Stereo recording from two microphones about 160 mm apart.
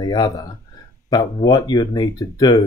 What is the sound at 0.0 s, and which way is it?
Speech, 25° left (ahead or behind).